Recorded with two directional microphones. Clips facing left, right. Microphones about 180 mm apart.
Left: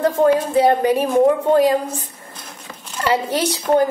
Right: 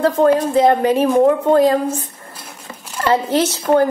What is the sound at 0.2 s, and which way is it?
A woman's voice, 10° left (ahead or behind).